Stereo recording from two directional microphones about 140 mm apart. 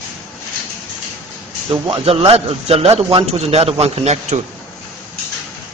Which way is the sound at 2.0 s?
45° right (ahead or behind).